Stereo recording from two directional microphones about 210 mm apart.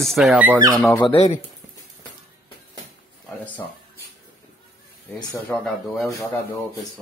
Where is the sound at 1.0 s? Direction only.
30° left (ahead or behind).